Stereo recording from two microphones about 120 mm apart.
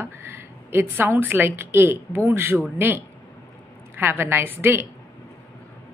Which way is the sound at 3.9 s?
20° right (ahead or behind).